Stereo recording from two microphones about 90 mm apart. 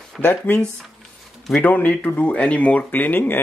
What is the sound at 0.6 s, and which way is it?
Speech, 5° left (ahead or behind).